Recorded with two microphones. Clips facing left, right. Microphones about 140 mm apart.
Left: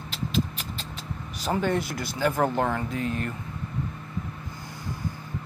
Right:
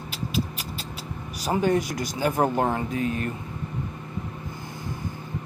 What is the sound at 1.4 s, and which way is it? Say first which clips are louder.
Speech: right 3 dB; 15° right (ahead or behind).